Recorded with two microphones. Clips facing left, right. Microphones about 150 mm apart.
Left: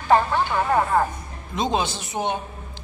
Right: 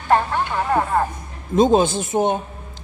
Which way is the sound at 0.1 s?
Centre (ahead or behind).